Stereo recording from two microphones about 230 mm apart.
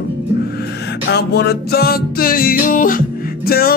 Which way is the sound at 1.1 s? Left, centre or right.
Left.